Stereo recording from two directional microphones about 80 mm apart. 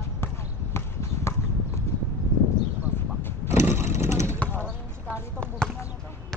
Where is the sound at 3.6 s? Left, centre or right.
Right.